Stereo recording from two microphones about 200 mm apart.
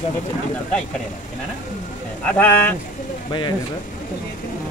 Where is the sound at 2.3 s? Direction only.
10° left (ahead or behind).